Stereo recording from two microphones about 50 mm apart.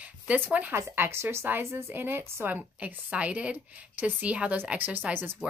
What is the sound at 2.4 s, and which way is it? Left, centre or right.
A woman's voice, right.